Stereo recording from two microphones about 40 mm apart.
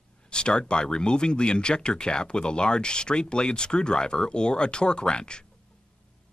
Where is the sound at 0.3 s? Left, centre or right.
Left.